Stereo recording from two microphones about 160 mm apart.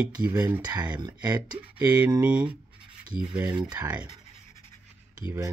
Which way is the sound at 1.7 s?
10° right (ahead or behind).